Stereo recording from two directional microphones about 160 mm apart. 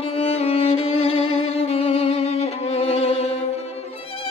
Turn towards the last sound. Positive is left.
turn(degrees=40)  # may be behind; listen again after turning